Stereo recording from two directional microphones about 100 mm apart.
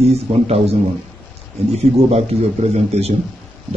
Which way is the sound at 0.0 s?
90° right.